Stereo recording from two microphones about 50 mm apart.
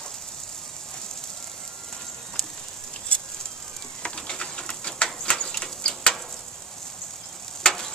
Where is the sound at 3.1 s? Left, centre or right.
Left.